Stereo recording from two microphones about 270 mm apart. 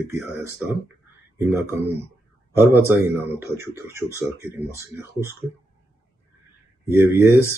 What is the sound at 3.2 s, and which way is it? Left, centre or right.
Speech, centre.